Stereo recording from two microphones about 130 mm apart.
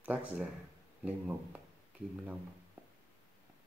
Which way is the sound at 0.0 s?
10° right (ahead or behind).